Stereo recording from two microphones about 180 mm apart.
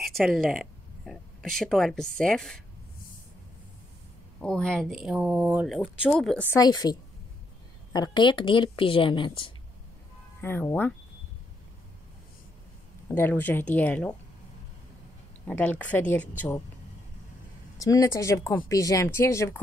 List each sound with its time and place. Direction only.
0.0 s speech: centre (ahead or behind)
4.4 s a woman's voice: 5° left (ahead or behind); by 9.5 s 30° left (ahead or behind)
10.4 s speech: 10° left (ahead or behind)
13.1 s speech: 10° left (ahead or behind)
15.4 s speech: 10° left (ahead or behind)
17.7 s speech: 20° left (ahead or behind)